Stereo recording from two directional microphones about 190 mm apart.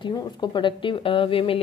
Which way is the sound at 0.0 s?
25° left (ahead or behind).